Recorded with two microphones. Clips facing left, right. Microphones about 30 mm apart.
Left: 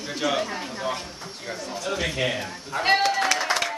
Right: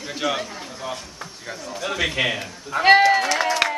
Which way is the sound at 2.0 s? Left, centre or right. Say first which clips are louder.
Right 4 dB; right.